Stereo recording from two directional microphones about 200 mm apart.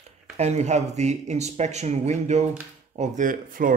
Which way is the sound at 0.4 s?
35° right (ahead or behind).